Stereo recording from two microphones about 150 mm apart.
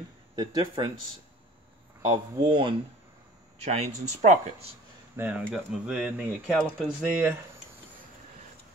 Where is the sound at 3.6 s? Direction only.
45° right (ahead or behind).